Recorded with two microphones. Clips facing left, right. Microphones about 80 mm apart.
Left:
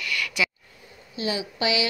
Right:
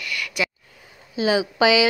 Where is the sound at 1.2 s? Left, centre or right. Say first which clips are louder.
Right 8 dB; right.